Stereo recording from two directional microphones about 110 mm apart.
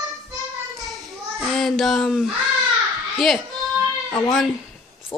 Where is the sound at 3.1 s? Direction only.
Centre (ahead or behind).